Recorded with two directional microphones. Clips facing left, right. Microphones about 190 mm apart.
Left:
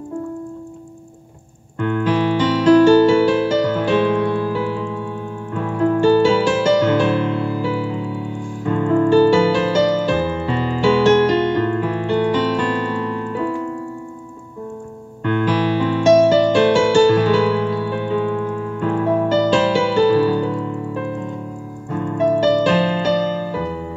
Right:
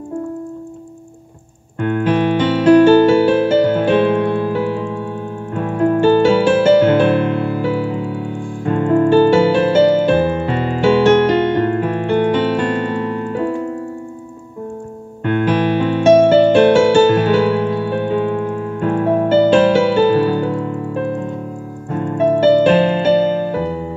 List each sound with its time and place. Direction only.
1.8 s piano: 55° right (ahead or behind)
5.8 s music: 55° right (ahead or behind)
15.2 s music: 55° right (ahead or behind)